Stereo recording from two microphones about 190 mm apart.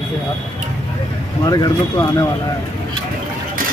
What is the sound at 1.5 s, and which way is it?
Speech, 20° left (ahead or behind).